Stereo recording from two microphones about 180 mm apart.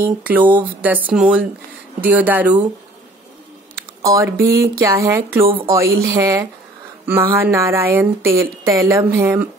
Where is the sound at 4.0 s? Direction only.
15° right (ahead or behind).